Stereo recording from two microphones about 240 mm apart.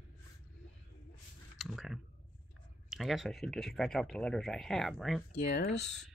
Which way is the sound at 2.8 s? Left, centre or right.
Centre.